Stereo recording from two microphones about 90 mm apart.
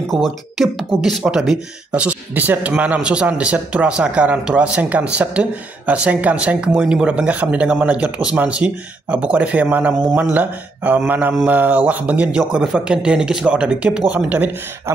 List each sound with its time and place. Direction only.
0.1 s speech: centre (ahead or behind); by 11.0 s 15° right (ahead or behind)
11.1 s mantra: 20° right (ahead or behind)
11.4 s speech: 15° right (ahead or behind)